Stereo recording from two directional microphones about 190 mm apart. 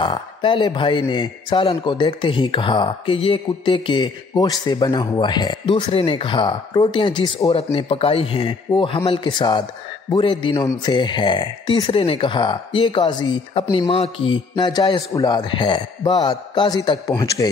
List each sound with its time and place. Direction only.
0.0 s speech: 25° left (ahead or behind)